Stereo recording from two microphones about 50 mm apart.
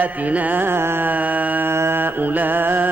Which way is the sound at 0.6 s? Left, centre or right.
Right.